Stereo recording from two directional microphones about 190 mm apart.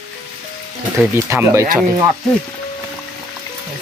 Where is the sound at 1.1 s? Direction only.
15° right (ahead or behind).